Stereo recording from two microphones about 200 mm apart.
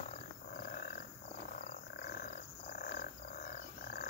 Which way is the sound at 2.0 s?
40° left (ahead or behind).